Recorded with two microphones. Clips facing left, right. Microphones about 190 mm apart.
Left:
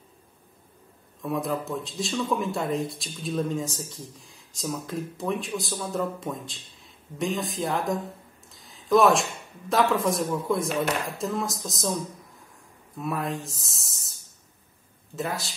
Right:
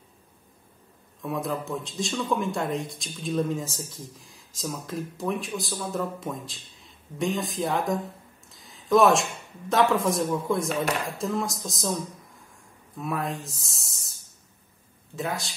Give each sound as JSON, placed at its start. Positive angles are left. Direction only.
{"t": 1.2, "sound": "speech", "side_deg": 0}
{"t": 12.9, "sound": "speech", "side_deg": 0}
{"t": 15.1, "sound": "speech", "side_deg": 0}